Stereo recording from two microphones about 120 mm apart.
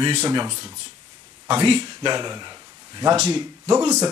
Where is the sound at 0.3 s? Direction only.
40° right (ahead or behind).